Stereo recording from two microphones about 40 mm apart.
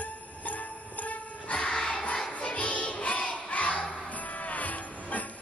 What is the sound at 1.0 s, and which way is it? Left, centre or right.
Jingle bell, left.